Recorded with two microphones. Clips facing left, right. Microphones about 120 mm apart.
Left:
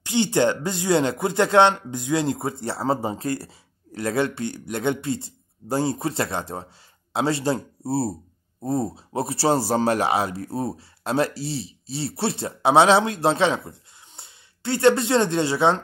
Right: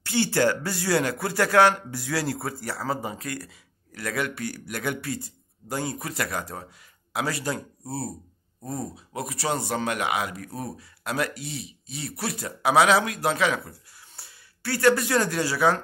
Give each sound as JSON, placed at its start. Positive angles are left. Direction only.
{"t": 0.0, "sound": "speech", "side_deg": 20}